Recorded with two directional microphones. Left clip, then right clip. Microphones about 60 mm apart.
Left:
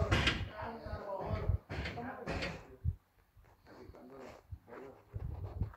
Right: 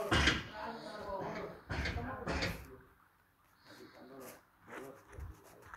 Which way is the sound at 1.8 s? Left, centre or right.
Centre.